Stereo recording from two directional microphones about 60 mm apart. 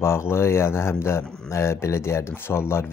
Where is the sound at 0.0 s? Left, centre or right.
Left.